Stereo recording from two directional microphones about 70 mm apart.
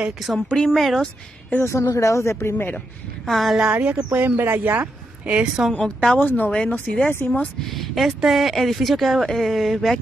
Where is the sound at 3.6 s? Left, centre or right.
Centre.